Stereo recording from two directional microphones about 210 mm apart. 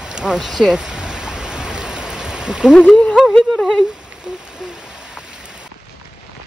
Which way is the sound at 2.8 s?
5° left (ahead or behind).